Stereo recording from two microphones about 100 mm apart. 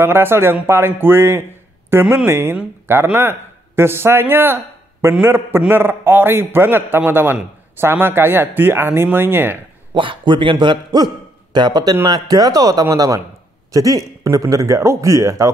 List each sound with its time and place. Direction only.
0.0 s a man's voice: 25° right (ahead or behind)
9.9 s a man's voice: 55° right (ahead or behind); by 15.5 s 30° right (ahead or behind)